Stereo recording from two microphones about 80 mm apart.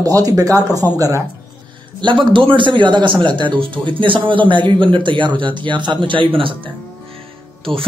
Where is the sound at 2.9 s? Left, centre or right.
Right.